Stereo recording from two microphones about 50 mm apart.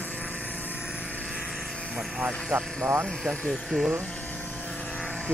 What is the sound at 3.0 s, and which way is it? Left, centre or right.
Speech, centre.